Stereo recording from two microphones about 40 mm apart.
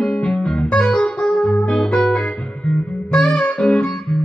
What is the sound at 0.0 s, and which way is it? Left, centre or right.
Music, left.